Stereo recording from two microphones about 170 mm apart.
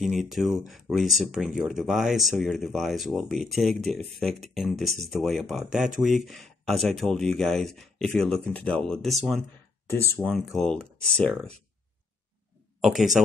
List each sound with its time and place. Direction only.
0.0 s speech: centre (ahead or behind)
12.8 s speech: centre (ahead or behind)